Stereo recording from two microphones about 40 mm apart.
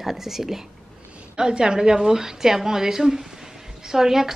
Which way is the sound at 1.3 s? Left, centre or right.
Centre.